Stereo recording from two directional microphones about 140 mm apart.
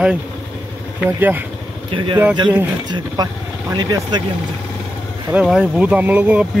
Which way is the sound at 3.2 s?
25° right (ahead or behind).